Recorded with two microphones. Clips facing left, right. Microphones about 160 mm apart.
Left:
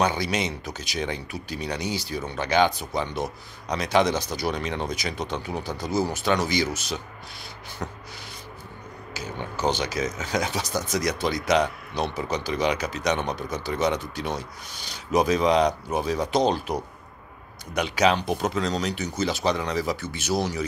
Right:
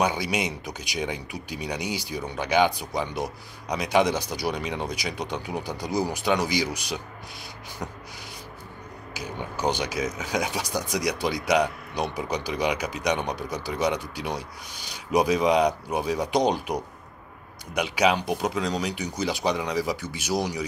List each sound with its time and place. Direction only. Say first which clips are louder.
0.0 s speech: left 1 dB; 10° right (ahead or behind)
9.1 s speech: left 1 dB; 15° right (ahead or behind)